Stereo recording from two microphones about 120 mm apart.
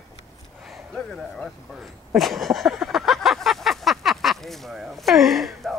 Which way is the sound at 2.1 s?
Centre (ahead or behind).